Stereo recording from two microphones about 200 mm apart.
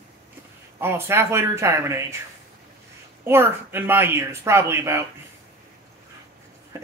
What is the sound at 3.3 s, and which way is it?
A man's voice, 10° right (ahead or behind).